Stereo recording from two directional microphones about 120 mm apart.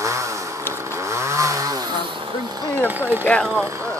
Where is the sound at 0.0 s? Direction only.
25° right (ahead or behind).